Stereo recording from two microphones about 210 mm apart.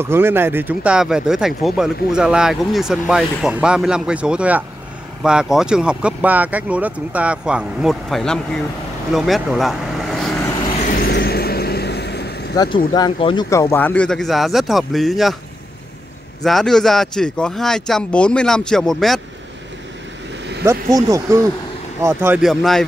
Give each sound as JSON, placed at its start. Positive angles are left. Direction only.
{"t": 0.0, "sound": "speech", "side_deg": -10}
{"t": 10.8, "sound": "vehicle", "side_deg": 40}
{"t": 12.5, "sound": "speech", "side_deg": 20}
{"t": 16.4, "sound": "speech", "side_deg": 0}
{"t": 20.6, "sound": "speech", "side_deg": -15}